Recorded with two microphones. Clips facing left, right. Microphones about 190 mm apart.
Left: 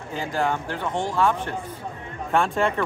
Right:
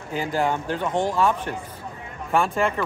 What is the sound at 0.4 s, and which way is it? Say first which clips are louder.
Speech: right 1 dB; 15° right (ahead or behind).